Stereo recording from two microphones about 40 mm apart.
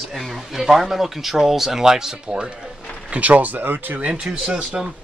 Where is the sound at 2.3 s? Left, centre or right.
Right.